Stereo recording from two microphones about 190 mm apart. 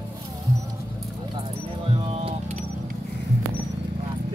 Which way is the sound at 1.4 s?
25° right (ahead or behind).